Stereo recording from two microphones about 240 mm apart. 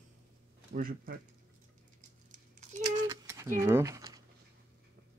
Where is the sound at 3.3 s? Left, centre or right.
Centre.